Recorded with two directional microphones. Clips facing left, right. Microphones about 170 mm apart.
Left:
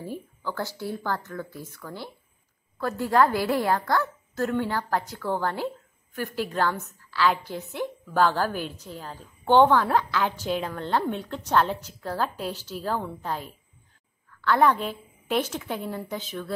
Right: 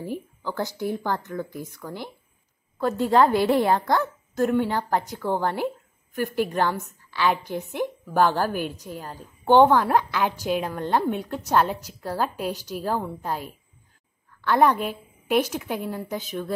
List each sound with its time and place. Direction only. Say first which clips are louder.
0.0 s a woman's voice: right 3 dB; 15° right (ahead or behind)